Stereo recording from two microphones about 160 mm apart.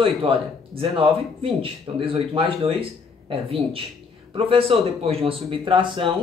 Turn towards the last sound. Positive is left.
turn(degrees=-30)  # may be behind; listen again after turning